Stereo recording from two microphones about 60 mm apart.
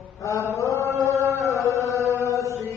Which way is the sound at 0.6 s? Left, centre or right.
Left.